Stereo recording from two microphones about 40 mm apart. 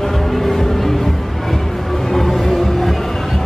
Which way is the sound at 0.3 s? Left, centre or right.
Centre.